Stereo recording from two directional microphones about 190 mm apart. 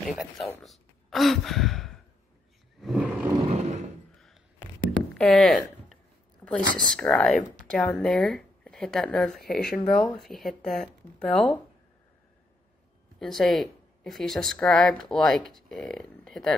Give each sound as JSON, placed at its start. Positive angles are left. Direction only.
{"t": 0.1, "sound": "speech", "side_deg": 0}
{"t": 2.8, "sound": "roar", "side_deg": -5}
{"t": 3.4, "sound": "a sound", "side_deg": -35}
{"t": 5.1, "sound": "a sound", "side_deg": 0}
{"t": 6.4, "sound": "a woman's voice", "side_deg": 5}
{"t": 13.2, "sound": "a woman's voice", "side_deg": 0}